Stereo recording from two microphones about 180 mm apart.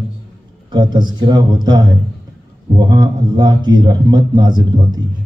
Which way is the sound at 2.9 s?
25° right (ahead or behind).